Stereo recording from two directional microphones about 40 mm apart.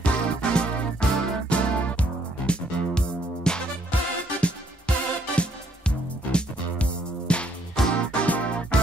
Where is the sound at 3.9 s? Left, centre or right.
Left.